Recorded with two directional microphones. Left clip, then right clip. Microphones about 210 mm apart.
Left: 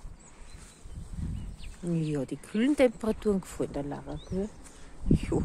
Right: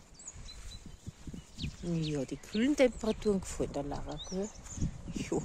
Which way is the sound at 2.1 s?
10° right (ahead or behind).